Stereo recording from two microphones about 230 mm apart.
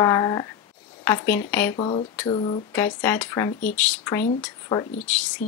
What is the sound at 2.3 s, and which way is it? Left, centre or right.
Speech, left.